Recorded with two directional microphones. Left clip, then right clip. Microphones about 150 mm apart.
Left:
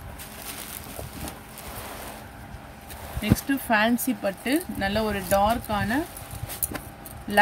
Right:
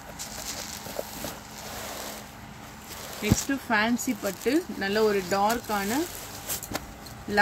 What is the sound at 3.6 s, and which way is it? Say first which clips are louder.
Speech: left 3 dB; 90° left.